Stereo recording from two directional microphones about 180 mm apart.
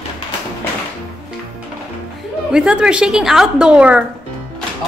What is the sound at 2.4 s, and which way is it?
A child's voice, 5° right (ahead or behind).